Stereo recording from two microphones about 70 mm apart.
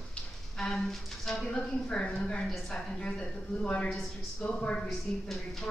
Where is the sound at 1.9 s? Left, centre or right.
Centre.